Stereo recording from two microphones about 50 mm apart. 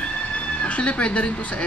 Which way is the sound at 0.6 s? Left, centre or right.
Left.